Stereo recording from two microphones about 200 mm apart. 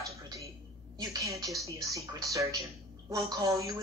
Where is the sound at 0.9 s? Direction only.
15° right (ahead or behind).